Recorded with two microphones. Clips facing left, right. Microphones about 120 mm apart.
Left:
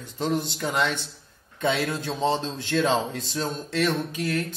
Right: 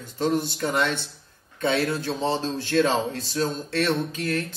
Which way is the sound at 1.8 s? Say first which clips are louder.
Even; 15° left (ahead or behind).